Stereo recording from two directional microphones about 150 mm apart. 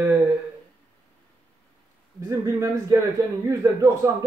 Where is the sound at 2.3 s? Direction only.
20° right (ahead or behind).